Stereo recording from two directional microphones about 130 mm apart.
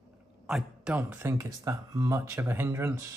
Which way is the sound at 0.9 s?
15° right (ahead or behind).